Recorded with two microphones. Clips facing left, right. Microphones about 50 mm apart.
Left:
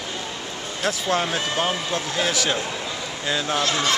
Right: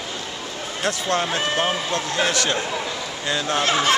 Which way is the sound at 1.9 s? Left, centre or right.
Centre.